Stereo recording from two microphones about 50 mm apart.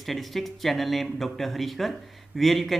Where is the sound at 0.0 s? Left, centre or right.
Centre.